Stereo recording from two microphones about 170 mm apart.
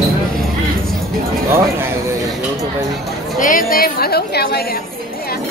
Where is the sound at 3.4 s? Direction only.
55° left (ahead or behind).